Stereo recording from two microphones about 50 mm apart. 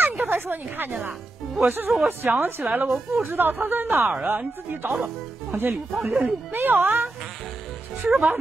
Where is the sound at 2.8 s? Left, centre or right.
Centre.